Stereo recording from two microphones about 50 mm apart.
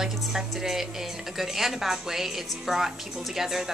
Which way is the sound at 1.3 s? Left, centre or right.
Centre.